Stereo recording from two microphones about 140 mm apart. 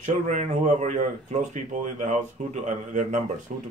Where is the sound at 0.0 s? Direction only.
55° right (ahead or behind).